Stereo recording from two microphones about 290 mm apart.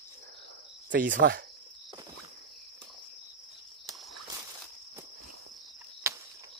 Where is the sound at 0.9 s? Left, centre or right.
Right.